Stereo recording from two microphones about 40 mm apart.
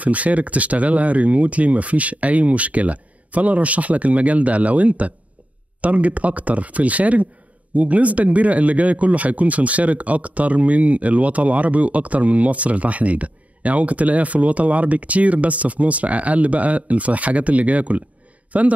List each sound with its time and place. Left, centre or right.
0.0 s a man's voice: right